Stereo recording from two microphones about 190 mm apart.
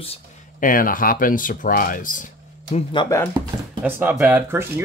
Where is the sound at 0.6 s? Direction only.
45° left (ahead or behind).